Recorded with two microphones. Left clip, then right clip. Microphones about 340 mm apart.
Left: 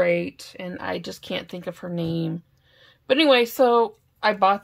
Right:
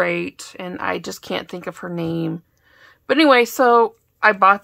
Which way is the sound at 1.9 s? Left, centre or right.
Right.